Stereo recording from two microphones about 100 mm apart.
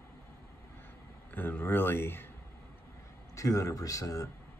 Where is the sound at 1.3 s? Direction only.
20° left (ahead or behind).